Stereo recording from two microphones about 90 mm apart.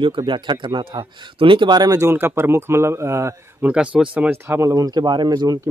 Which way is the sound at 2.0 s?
30° right (ahead or behind).